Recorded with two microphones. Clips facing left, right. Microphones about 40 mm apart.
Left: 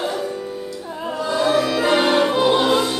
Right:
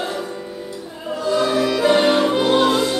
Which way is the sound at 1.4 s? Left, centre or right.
Centre.